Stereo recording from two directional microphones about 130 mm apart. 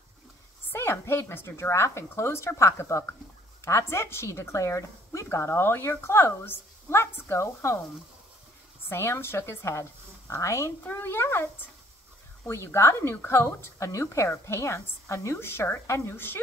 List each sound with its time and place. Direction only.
0.7 s a woman's voice: 20° left (ahead or behind)
8.8 s a woman's voice: 20° left (ahead or behind)
12.4 s a woman's voice: 20° left (ahead or behind)